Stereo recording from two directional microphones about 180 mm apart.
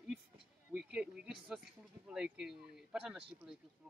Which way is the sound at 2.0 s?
5° right (ahead or behind).